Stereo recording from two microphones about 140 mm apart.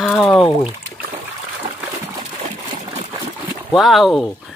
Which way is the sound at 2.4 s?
50° right (ahead or behind).